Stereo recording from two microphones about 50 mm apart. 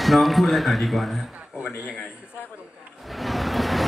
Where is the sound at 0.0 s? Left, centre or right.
Centre.